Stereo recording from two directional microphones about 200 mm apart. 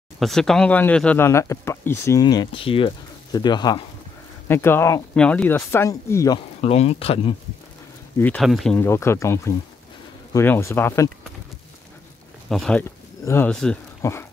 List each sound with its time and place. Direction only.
0.2 s speech: centre (ahead or behind); by 3.8 s 20° left (ahead or behind)
4.5 s speech: 10° left (ahead or behind)
6.6 s speech: 30° left (ahead or behind)
8.2 s speech: 5° left (ahead or behind)
8.7 s speech: 10° left (ahead or behind)
12.4 s speech: 5° left (ahead or behind)